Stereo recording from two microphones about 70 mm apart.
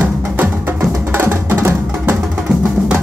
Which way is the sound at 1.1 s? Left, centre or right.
Right.